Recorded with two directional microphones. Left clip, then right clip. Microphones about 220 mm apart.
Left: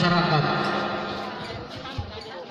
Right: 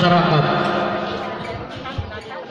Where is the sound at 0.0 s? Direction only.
5° right (ahead or behind).